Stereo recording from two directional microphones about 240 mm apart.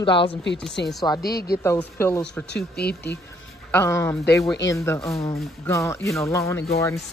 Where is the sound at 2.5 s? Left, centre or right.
Left.